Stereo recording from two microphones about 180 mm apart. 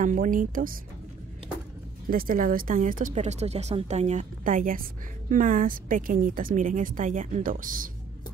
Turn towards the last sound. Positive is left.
turn(degrees=-50)  # may be behind; listen again after turning